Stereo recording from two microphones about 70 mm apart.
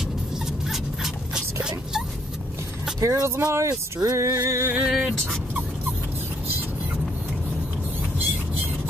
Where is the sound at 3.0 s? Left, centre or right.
Right.